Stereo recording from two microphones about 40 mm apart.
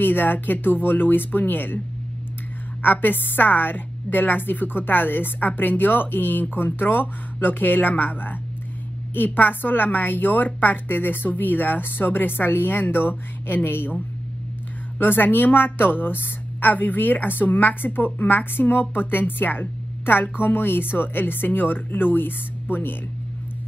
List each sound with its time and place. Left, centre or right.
0.0 s speech: left
2.8 s a woman's voice: left
15.0 s a woman's voice: left
16.6 s speech: left